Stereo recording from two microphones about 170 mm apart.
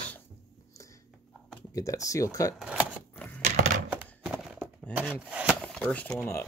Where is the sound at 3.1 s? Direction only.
10° left (ahead or behind).